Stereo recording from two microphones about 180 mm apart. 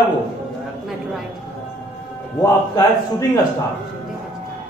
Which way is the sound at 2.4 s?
20° left (ahead or behind).